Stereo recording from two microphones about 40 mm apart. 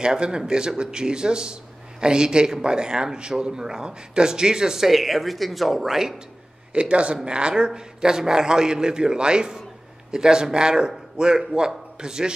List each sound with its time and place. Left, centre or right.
0.0 s a man's voice: right
6.7 s a man's voice: right